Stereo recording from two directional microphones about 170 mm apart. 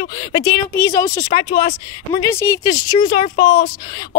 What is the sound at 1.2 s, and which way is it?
Speech, 55° left (ahead or behind).